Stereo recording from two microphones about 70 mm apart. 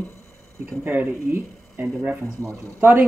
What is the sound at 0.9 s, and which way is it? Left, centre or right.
Speech, right.